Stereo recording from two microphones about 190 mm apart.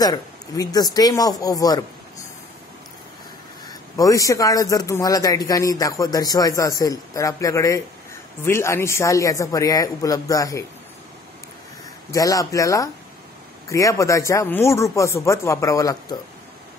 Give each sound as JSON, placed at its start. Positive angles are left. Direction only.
{"t": 0.0, "sound": "speech", "side_deg": 20}
{"t": 3.9, "sound": "a man's voice", "side_deg": 15}
{"t": 12.1, "sound": "a man's voice", "side_deg": 20}